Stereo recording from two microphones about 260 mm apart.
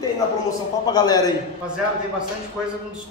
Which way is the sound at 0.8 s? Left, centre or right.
Centre.